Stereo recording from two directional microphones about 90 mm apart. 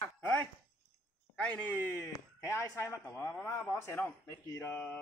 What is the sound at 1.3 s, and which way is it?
Speech, 15° left (ahead or behind).